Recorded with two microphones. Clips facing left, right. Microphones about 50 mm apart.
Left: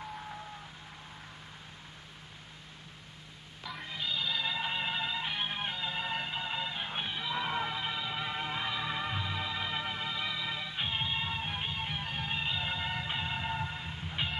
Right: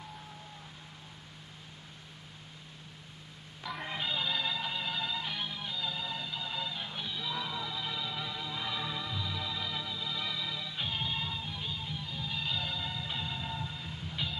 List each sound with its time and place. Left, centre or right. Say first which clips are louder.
3.8 s music: right 1 dB; centre
4.5 s music: left 2 dB; left
5.5 s music: left 2 dB; left
8.6 s music: left 2 dB; left
10.1 s music: left 2 dB; left
11.3 s music: left 3 dB; left
12.4 s music: even; left